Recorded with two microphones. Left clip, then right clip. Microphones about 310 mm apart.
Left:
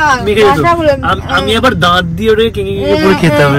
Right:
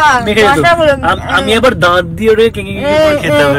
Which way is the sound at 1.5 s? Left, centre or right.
Centre.